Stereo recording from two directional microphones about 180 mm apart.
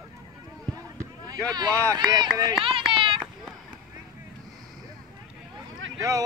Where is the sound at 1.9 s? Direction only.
25° right (ahead or behind).